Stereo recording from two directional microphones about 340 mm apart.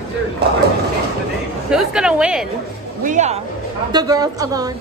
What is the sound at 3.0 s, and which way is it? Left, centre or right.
A woman's voice, right.